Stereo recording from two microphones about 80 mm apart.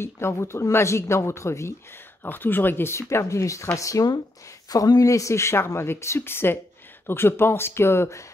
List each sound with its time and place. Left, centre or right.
0.0 s speech: left
2.2 s speech: left